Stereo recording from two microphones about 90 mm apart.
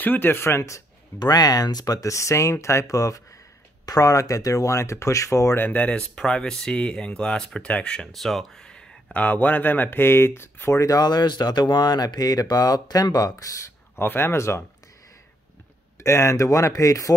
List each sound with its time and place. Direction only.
0.0 s speech: 20° left (ahead or behind)
1.2 s speech: 45° left (ahead or behind)
5.6 s speech: 15° left (ahead or behind); by 13.7 s 40° left (ahead or behind)
13.9 s speech: 25° left (ahead or behind)
16.0 s speech: 30° left (ahead or behind)